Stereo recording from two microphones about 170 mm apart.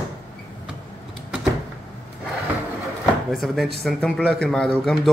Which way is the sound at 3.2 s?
Centre (ahead or behind).